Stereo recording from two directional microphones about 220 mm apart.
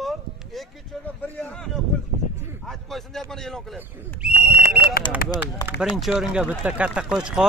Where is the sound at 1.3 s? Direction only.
5° left (ahead or behind).